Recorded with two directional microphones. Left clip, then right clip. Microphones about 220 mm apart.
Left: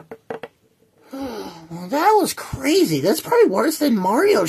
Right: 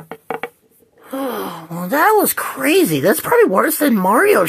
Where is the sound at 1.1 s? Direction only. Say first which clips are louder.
Right 8 dB; 10° right (ahead or behind).